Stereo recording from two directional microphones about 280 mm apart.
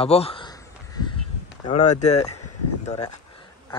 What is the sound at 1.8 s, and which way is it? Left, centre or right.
Speech, left.